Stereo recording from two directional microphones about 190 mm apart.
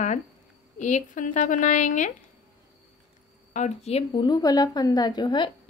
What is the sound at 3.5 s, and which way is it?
A woman's voice, 35° left (ahead or behind).